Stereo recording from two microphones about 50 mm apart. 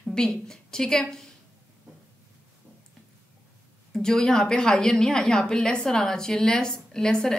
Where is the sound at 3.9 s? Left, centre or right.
Centre.